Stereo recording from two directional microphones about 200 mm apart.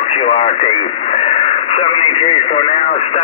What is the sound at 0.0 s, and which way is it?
Speech, 30° left (ahead or behind).